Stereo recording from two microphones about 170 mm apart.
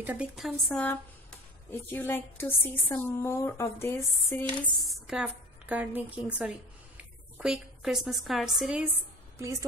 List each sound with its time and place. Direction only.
0.0 s a woman's voice: 10° right (ahead or behind)
0.7 s a woman's voice: 10° left (ahead or behind)
4.7 s a woman's voice: centre (ahead or behind)
9.4 s a woman's voice: 20° right (ahead or behind)